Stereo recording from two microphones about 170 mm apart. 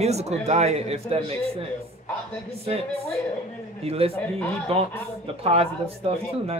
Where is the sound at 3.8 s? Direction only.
35° right (ahead or behind).